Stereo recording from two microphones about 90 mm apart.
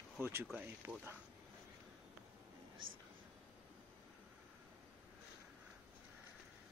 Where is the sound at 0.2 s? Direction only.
25° right (ahead or behind).